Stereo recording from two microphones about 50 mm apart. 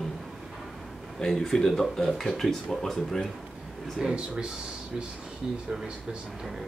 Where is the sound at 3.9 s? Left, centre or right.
Centre.